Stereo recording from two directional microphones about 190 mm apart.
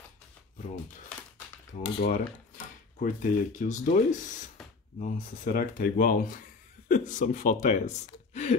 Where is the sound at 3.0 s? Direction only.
45° left (ahead or behind).